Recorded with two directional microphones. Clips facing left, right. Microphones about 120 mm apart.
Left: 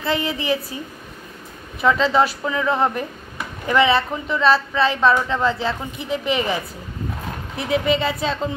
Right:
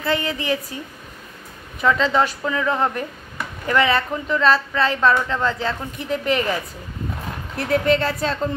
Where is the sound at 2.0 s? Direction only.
10° left (ahead or behind).